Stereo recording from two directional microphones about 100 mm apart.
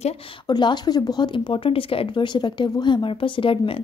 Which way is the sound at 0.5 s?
45° left (ahead or behind).